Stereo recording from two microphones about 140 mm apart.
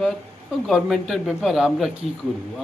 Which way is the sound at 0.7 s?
Centre (ahead or behind).